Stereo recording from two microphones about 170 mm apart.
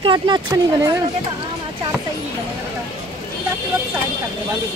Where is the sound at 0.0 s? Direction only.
30° right (ahead or behind).